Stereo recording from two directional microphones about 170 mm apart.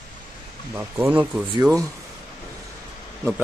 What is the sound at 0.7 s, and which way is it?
A man's voice, 10° right (ahead or behind).